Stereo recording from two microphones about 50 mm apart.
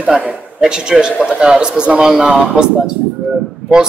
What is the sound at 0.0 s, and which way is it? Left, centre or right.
A man's voice, centre.